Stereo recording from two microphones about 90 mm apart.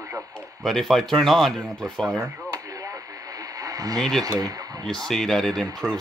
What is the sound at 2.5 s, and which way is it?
Radio, 40° right (ahead or behind).